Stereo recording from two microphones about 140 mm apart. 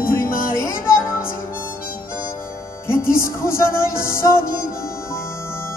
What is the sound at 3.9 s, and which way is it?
Music, 90° left.